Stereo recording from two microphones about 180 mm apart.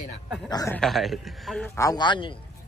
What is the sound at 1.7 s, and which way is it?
Speech, 20° left (ahead or behind).